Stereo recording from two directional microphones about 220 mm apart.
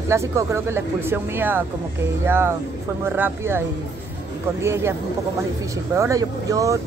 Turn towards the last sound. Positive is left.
turn(degrees=-15)  # may be behind; listen again after turning